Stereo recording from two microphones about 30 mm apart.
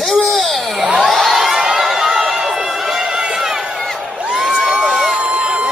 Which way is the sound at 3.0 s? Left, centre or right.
Right.